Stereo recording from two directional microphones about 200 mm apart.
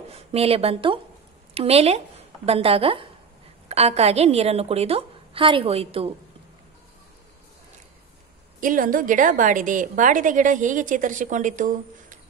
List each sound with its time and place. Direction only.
0.1 s a woman's voice: 30° right (ahead or behind)
8.5 s a woman's voice: 40° right (ahead or behind)